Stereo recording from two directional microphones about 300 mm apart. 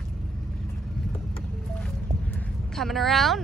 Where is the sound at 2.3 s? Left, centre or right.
Centre.